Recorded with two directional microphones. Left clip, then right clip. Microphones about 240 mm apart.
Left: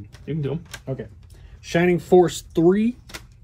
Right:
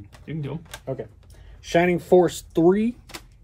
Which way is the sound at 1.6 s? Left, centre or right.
Right.